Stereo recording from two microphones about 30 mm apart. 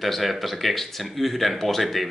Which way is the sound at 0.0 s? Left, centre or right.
Centre.